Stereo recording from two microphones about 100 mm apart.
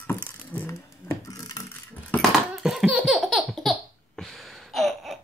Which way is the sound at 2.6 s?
5° right (ahead or behind).